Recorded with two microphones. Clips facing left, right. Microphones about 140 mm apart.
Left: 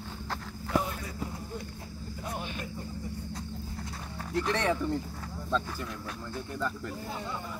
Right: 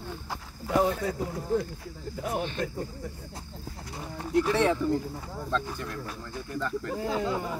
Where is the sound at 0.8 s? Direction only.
90° right.